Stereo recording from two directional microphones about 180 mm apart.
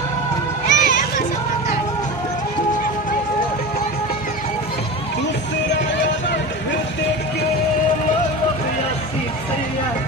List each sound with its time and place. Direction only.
0.7 s music: 45° left (ahead or behind)